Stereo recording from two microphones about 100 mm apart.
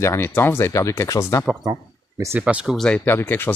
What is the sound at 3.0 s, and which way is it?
Speech, 20° left (ahead or behind).